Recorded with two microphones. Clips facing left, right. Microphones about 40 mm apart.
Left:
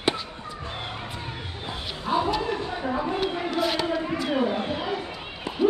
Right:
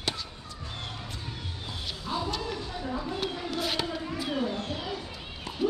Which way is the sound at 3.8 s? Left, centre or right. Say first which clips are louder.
Left 7 dB; left.